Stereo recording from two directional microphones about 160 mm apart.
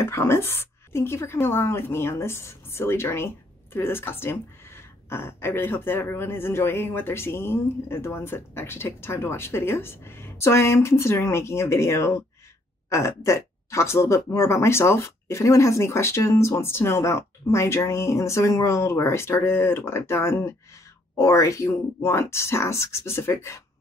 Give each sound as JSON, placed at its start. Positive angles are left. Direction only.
{"t": 0.0, "sound": "a woman's voice", "side_deg": 15}